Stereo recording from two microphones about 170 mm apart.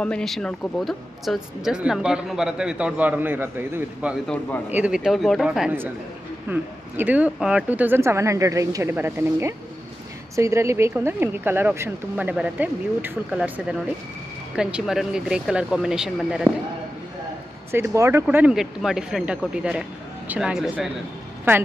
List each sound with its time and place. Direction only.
0.0 s a woman's voice: 5° left (ahead or behind); by 13.4 s 10° right (ahead or behind)
14.5 s a woman's voice: 5° right (ahead or behind)
17.6 s a woman's voice: 15° right (ahead or behind)